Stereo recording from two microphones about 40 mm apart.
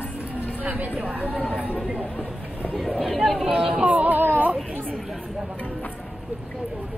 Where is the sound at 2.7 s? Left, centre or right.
Centre.